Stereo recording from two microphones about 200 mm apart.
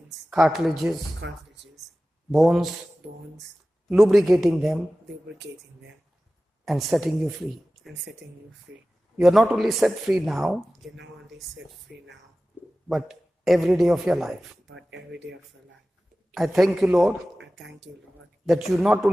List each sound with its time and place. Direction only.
0.3 s speech: centre (ahead or behind)
1.2 s speech: 65° right (ahead or behind)
2.3 s speech: centre (ahead or behind)
3.9 s speech: centre (ahead or behind)
6.6 s speech: centre (ahead or behind)
9.2 s speech: centre (ahead or behind)
12.8 s speech: centre (ahead or behind)
14.9 s speech: 65° right (ahead or behind)
16.3 s speech: centre (ahead or behind)
18.4 s speech: centre (ahead or behind)